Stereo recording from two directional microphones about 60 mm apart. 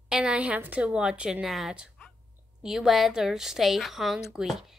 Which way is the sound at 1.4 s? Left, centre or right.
Centre.